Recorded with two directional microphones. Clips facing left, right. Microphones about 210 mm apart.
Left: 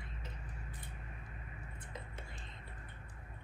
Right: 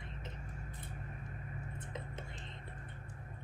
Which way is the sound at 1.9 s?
20° right (ahead or behind).